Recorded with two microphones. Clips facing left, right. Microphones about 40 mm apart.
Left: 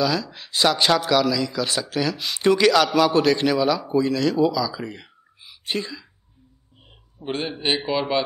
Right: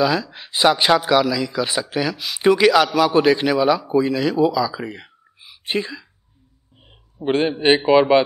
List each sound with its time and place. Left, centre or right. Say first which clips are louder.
0.0 s speech: right 4 dB; centre
7.2 s a man's voice: right 9 dB; right